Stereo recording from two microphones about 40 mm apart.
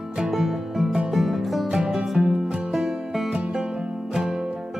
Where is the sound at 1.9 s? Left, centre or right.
Centre.